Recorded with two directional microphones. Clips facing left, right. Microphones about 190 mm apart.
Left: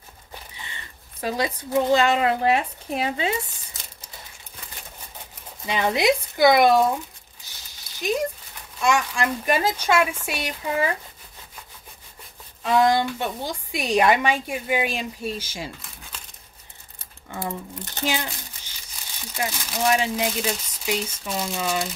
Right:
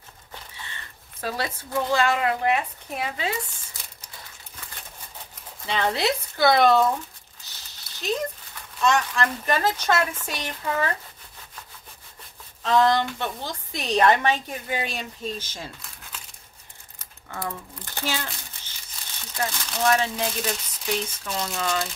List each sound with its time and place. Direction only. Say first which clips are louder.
0.3 s a sound: left 1 dB; 15° left (ahead or behind)
1.2 s speech: left 4 dB; 15° left (ahead or behind)
5.7 s a woman's voice: left 3 dB; 15° left (ahead or behind)
8.0 s a woman's voice: left 3 dB; 10° left (ahead or behind)
12.6 s a woman's voice: left 1 dB; 10° left (ahead or behind)
17.3 s a woman's voice: left 3 dB; 20° left (ahead or behind)